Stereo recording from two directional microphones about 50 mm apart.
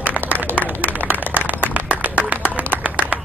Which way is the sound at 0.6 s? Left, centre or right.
Right.